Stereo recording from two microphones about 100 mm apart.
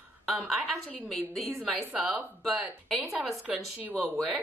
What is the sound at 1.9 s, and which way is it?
Speech, 5° right (ahead or behind).